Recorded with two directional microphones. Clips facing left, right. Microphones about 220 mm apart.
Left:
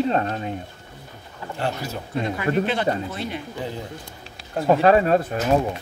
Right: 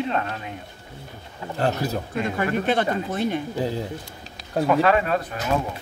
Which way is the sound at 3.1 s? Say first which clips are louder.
Right 6 dB; 50° right (ahead or behind).